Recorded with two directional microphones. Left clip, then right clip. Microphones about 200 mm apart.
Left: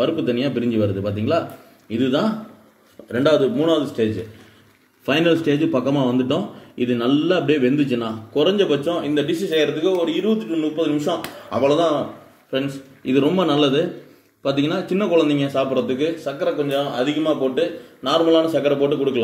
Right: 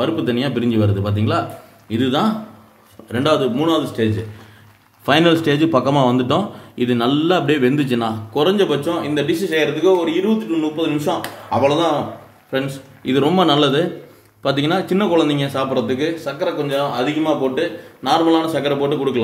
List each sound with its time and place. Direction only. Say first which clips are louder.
0.0 s a man's voice: right 1 dB; 10° right (ahead or behind)
5.0 s a man's voice: right 3 dB; 20° right (ahead or behind)